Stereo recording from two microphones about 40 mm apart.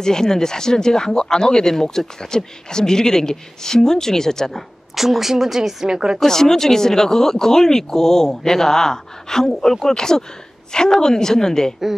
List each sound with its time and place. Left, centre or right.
0.0 s speech: centre
4.9 s a woman's voice: centre
6.1 s speech: centre